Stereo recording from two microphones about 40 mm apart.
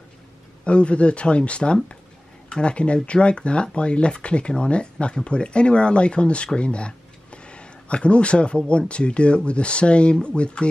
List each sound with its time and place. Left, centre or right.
0.7 s speech: left